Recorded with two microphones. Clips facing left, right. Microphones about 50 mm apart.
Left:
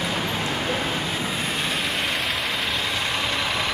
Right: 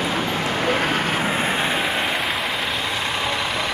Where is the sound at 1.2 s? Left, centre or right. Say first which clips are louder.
Right 5 dB; right; by 3.7 s centre.